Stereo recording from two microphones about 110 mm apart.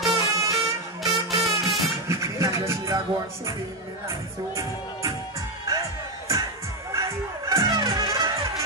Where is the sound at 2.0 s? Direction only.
25° right (ahead or behind).